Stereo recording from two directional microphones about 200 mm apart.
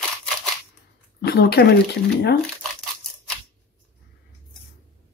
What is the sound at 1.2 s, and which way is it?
Speech, 55° left (ahead or behind).